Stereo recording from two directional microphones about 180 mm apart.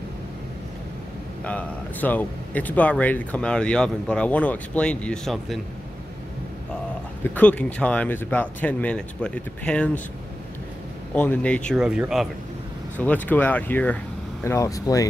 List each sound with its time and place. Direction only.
1.4 s speech: 10° left (ahead or behind)
7.3 s speech: 5° left (ahead or behind)
11.1 s speech: 10° left (ahead or behind)
12.9 s speech: 10° left (ahead or behind)